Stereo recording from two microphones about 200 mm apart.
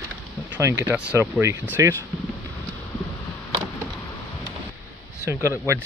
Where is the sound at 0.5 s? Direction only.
5° right (ahead or behind).